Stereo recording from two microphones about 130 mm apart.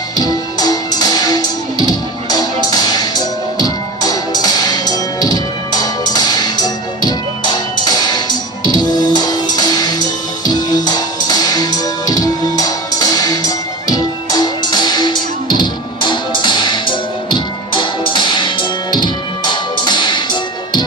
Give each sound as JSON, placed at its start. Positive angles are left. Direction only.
{"t": 0.2, "sound": "music", "side_deg": 30}